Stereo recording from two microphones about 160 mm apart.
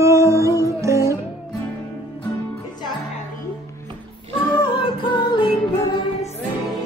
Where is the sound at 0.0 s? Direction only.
20° right (ahead or behind).